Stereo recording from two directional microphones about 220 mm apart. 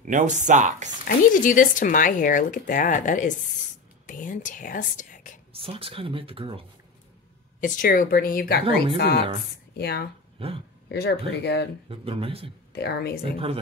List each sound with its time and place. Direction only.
0.0 s speech: 35° right (ahead or behind)
1.0 s speech: 35° left (ahead or behind)
5.5 s speech: 25° right (ahead or behind)
7.6 s speech: 35° left (ahead or behind)
10.4 s speech: 25° right (ahead or behind)
10.9 s speech: 50° left (ahead or behind)
11.9 s speech: 25° right (ahead or behind)
12.7 s speech: 50° left (ahead or behind)